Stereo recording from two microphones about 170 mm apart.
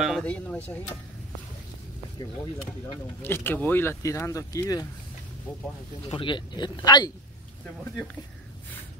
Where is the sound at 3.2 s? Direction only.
15° left (ahead or behind).